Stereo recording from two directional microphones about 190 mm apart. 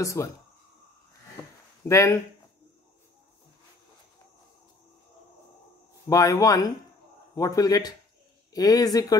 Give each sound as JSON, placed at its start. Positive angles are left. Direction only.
{"t": 0.0, "sound": "speech", "side_deg": 15}
{"t": 1.9, "sound": "speech", "side_deg": 15}
{"t": 6.0, "sound": "speech", "side_deg": 20}